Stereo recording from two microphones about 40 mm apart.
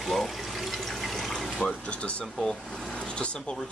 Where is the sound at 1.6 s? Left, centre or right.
Left.